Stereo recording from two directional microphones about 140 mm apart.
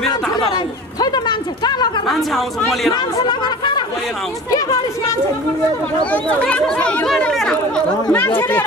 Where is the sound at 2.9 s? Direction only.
30° left (ahead or behind).